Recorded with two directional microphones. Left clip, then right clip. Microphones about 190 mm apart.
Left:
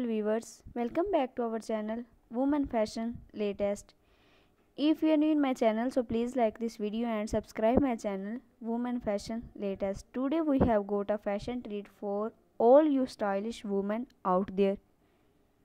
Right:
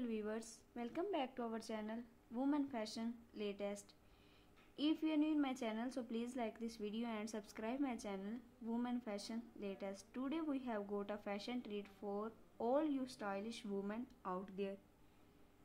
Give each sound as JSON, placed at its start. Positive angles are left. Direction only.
{"t": 0.0, "sound": "a woman's voice", "side_deg": 45}